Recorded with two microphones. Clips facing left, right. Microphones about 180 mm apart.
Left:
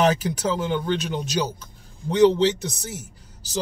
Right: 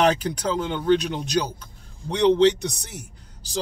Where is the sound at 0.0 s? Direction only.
5° left (ahead or behind).